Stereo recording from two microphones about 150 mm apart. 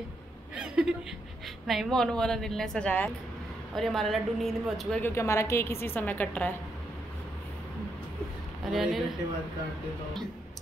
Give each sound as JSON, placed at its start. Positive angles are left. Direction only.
{"t": 0.6, "sound": "chuckle", "side_deg": -5}
{"t": 1.7, "sound": "a woman's voice", "side_deg": 0}
{"t": 5.0, "sound": "a woman's voice", "side_deg": 20}
{"t": 8.7, "sound": "a woman's voice", "side_deg": 0}